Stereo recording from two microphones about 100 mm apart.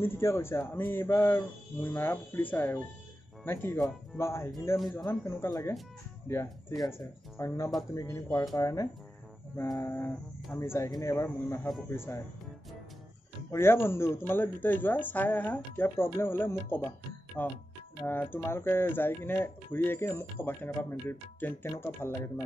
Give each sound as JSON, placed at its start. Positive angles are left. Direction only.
{"t": 0.0, "sound": "speech", "side_deg": 25}
{"t": 9.8, "sound": "speech", "side_deg": 25}
{"t": 10.9, "sound": "speech", "side_deg": 35}
{"t": 13.5, "sound": "speech", "side_deg": 25}